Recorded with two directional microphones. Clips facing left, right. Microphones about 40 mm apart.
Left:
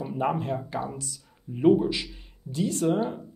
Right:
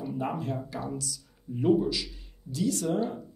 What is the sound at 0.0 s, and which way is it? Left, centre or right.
Speech, left.